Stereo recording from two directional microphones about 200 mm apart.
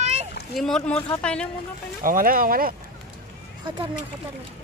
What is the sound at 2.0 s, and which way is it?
Speech, 45° right (ahead or behind).